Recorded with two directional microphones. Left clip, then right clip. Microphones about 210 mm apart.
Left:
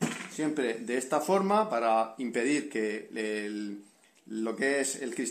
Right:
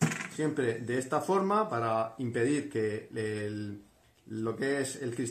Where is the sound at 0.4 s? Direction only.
30° left (ahead or behind).